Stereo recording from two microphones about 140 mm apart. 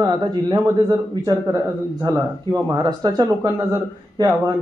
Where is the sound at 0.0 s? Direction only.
30° right (ahead or behind).